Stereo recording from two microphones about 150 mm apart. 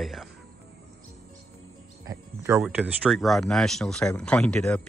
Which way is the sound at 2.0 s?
15° right (ahead or behind).